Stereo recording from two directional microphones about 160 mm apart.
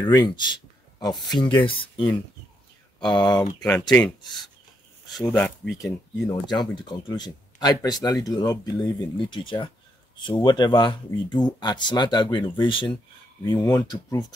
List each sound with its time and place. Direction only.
0.0 s speech: 25° left (ahead or behind)
1.4 s speech: 10° left (ahead or behind)
1.8 s speech: 30° left (ahead or behind)
3.5 s speech: 5° left (ahead or behind)
4.2 s speech: 25° left (ahead or behind)
5.1 s speech: 5° left (ahead or behind)
6.5 s speech: 25° left (ahead or behind)
13.5 s speech: 20° left (ahead or behind)